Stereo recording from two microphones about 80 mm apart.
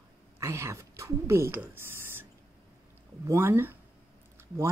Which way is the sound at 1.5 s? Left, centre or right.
Right.